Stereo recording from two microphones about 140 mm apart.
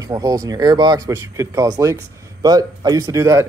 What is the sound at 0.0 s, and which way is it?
Speech, 25° right (ahead or behind).